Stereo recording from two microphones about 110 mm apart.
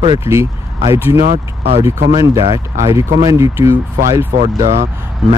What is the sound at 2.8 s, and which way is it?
Speech, 30° right (ahead or behind).